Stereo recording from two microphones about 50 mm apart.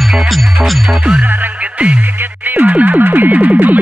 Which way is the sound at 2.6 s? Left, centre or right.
Right.